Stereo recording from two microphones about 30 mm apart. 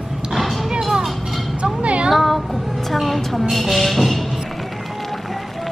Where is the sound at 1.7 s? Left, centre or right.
Right.